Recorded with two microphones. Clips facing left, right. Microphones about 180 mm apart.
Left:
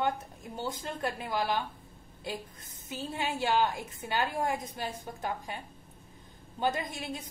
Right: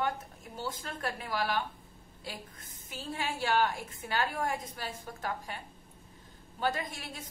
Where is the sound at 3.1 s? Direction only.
25° left (ahead or behind).